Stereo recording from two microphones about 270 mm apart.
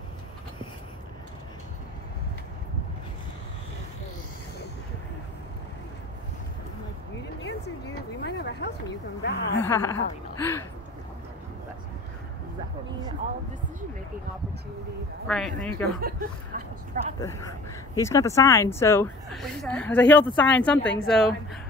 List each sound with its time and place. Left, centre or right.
8.2 s a sound: left
9.2 s a woman's voice: left
9.6 s speech: centre
15.2 s speech: centre
16.0 s speech: right
17.2 s speech: centre